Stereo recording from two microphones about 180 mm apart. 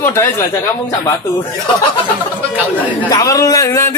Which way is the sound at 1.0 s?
25° left (ahead or behind).